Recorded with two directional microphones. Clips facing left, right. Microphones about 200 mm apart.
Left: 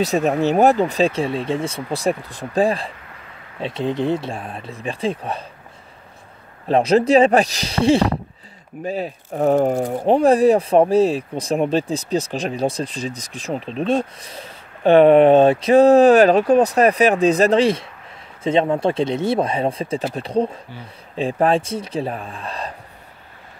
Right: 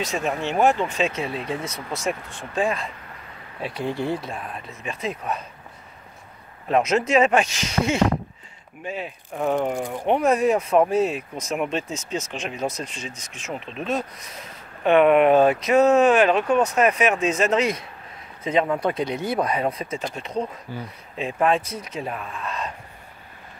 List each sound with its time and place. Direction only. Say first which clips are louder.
0.0 s speech: left 8 dB; 40° left (ahead or behind)
3.6 s speech: left 5 dB; 20° left (ahead or behind)
6.7 s speech: left 5 dB; 35° left (ahead or behind)